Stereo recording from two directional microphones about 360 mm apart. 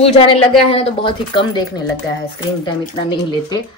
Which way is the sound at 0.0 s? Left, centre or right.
Centre.